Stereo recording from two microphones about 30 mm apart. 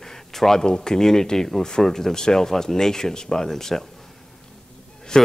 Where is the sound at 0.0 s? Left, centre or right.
Centre.